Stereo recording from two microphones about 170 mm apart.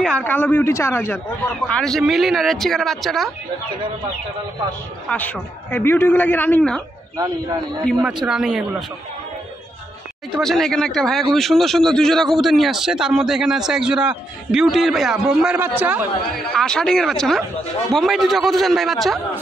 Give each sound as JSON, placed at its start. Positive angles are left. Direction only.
{"t": 0.0, "sound": "a man's voice", "side_deg": 10}
{"t": 1.7, "sound": "a man's voice", "side_deg": 5}
{"t": 5.1, "sound": "a man's voice", "side_deg": 10}
{"t": 7.2, "sound": "speech", "side_deg": -20}
{"t": 7.8, "sound": "a man's voice", "side_deg": 0}
{"t": 10.3, "sound": "a man's voice", "side_deg": 0}
{"t": 16.5, "sound": "a man's voice", "side_deg": 5}